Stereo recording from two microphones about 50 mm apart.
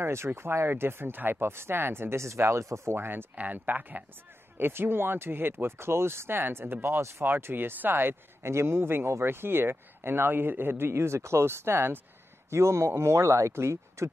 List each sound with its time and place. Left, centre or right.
0.0 s speech: right
3.0 s speech: right
3.3 s speech: right
4.6 s speech: right
12.4 s speech: right